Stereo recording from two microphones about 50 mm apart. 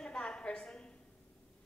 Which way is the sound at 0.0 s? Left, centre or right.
Centre.